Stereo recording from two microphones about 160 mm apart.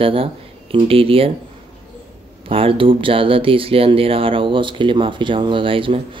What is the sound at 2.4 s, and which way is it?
Speech, 35° right (ahead or behind).